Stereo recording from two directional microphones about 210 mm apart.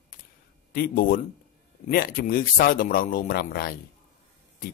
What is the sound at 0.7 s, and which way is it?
Speech, 45° left (ahead or behind).